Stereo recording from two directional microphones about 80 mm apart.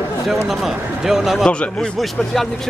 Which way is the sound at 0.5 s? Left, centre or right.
Centre.